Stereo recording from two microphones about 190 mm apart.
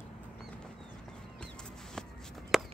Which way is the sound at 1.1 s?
5° left (ahead or behind).